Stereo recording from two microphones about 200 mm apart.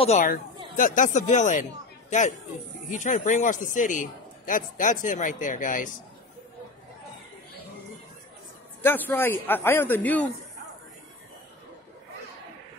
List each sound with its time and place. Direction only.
0.0 s a man's voice: 35° left (ahead or behind)
8.8 s a man's voice: 10° left (ahead or behind)